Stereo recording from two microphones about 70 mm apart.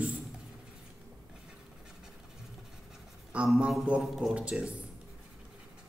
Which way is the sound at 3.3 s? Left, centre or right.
Centre.